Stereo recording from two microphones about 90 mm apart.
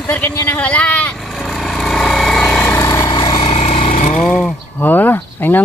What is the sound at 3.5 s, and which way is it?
Vehicle, 90° left.